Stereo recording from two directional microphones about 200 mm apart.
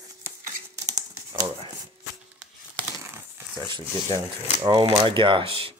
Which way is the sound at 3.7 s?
25° right (ahead or behind).